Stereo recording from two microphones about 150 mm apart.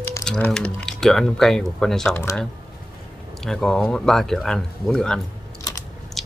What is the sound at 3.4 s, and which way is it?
Speech, 5° left (ahead or behind).